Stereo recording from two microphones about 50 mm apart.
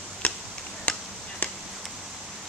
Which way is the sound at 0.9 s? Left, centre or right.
Left.